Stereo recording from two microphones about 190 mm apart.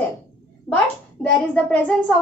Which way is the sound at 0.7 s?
5° left (ahead or behind).